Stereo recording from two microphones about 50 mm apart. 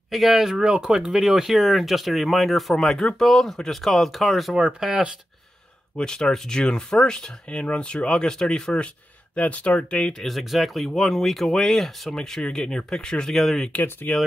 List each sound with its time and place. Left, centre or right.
0.1 s speech: centre
4.6 s speech: centre
5.9 s speech: centre
9.3 s speech: left
10.2 s speech: centre
14.0 s speech: left